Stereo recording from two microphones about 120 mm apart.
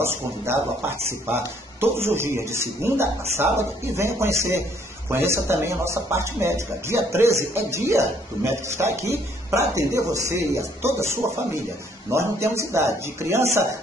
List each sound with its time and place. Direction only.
0.0 s speech: 20° right (ahead or behind)